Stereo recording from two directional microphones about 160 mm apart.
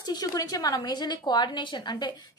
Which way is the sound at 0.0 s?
25° left (ahead or behind).